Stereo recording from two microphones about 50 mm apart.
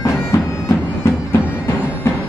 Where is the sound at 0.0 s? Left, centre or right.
Left.